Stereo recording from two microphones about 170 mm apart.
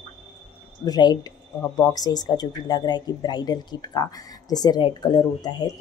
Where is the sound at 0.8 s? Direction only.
25° left (ahead or behind).